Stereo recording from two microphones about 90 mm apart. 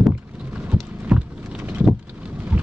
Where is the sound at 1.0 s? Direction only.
10° right (ahead or behind).